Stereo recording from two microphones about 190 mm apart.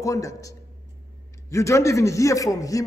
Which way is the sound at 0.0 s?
15° left (ahead or behind).